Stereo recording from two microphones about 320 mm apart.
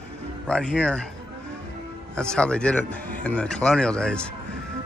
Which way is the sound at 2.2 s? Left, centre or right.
Centre.